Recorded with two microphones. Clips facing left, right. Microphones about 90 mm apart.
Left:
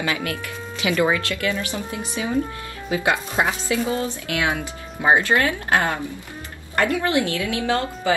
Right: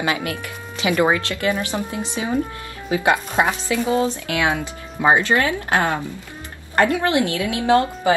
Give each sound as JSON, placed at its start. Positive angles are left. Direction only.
{"t": 0.0, "sound": "a woman's voice", "side_deg": -25}
{"t": 7.1, "sound": "a woman's voice", "side_deg": -20}